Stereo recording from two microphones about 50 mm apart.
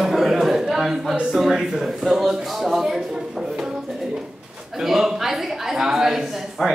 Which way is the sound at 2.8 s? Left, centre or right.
Centre.